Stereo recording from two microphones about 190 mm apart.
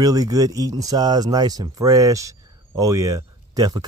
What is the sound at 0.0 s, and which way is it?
A man's voice, 20° right (ahead or behind).